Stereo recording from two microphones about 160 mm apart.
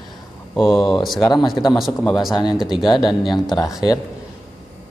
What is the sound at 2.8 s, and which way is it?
Speech, 25° left (ahead or behind).